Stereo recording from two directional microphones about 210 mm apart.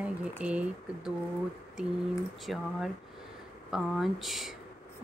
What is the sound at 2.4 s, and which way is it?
Speech, centre (ahead or behind).